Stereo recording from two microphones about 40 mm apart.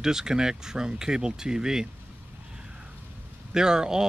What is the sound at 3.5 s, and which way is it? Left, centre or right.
Speech, centre.